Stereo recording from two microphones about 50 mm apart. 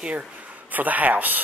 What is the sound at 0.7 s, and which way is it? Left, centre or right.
Speech, right.